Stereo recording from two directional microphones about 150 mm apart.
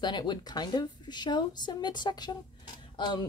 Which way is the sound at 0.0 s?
30° left (ahead or behind).